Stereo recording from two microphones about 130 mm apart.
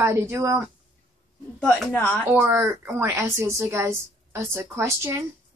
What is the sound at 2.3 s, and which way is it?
A woman's voice, 20° right (ahead or behind).